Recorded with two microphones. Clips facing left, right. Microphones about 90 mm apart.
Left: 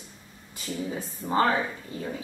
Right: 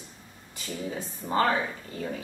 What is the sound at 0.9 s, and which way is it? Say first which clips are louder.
A woman's voice: left 1 dB; 20° left (ahead or behind).